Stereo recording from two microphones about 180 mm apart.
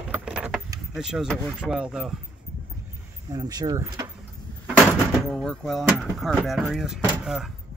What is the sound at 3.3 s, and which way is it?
Speech, 20° right (ahead or behind).